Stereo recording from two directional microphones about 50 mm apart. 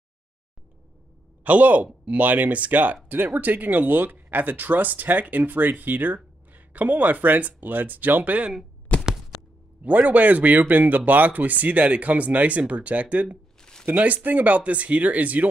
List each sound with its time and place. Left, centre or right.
1.4 s a man's voice: right
9.8 s speech: right
13.6 s a sound: centre
13.8 s speech: right